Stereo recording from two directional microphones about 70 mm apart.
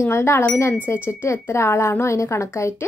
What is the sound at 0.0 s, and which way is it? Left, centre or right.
A woman's voice, left.